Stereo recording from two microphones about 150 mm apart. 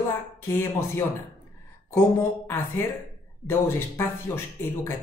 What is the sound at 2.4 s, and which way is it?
Speech, 15° left (ahead or behind).